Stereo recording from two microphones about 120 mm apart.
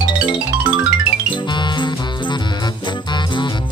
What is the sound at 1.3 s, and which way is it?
Music, 40° left (ahead or behind).